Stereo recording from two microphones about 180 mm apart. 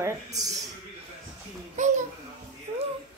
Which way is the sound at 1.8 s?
40° right (ahead or behind).